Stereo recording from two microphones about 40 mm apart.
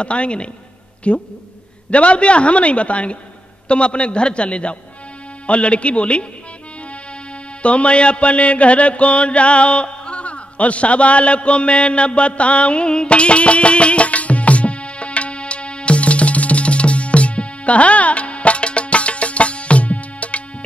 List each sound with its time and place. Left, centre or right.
0.0 s a man's voice: left
7.6 s mantra: left